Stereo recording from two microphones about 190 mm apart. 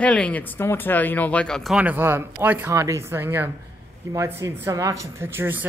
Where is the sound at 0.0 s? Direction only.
5° left (ahead or behind).